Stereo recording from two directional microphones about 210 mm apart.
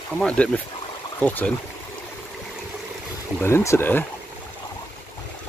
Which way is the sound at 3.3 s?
10° left (ahead or behind).